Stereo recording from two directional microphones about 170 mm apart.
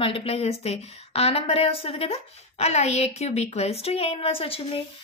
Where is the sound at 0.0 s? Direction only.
35° left (ahead or behind).